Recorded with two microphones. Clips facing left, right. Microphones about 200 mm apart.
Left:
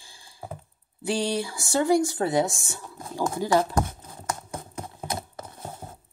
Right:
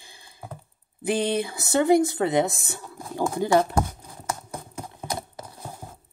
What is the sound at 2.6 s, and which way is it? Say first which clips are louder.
Speech: right 2 dB; 60° right (ahead or behind).